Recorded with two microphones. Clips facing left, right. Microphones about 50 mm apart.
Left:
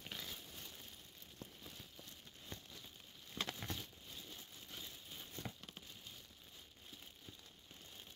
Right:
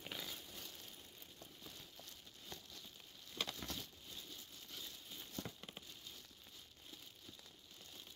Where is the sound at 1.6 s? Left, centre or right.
Centre.